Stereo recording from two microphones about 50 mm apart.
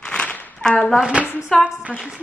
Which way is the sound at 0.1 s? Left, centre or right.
Centre.